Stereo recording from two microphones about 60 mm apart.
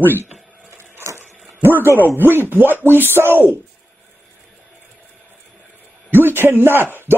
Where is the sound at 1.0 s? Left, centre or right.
Right.